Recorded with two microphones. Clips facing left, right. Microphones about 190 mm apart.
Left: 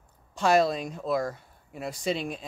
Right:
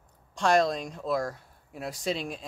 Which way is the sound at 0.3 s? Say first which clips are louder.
Left 1 dB; 5° left (ahead or behind).